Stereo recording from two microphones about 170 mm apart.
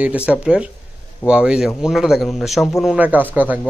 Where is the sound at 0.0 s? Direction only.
10° right (ahead or behind).